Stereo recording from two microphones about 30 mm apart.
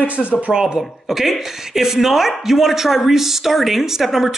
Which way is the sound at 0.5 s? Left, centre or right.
Right.